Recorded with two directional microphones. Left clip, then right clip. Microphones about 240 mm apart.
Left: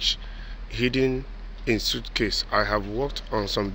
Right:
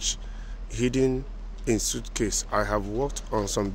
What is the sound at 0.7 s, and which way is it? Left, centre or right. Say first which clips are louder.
Speech: left 1 dB; centre.